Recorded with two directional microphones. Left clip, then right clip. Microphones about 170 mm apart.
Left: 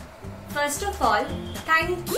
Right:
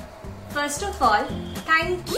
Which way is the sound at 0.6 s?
Centre (ahead or behind).